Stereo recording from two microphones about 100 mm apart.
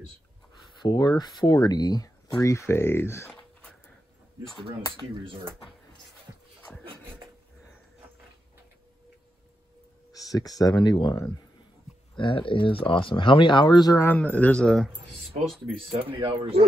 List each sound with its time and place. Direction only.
0.7 s speech: 45° left (ahead or behind); by 3.3 s 25° left (ahead or behind)
3.3 s a sound: 10° left (ahead or behind)
5.1 s speech: 60° right (ahead or behind)
10.1 s a sound: 35° left (ahead or behind)
10.6 s speech: 40° left (ahead or behind)
12.2 s speech: 60° left (ahead or behind); by 14.0 s 40° left (ahead or behind)
14.0 s speech: 15° left (ahead or behind)
15.9 s speech: 60° right (ahead or behind)